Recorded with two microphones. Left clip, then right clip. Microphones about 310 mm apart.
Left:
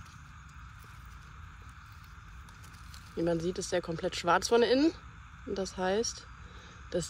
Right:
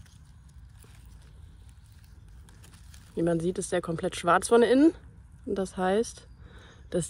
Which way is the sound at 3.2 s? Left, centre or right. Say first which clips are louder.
Right 4 dB; right.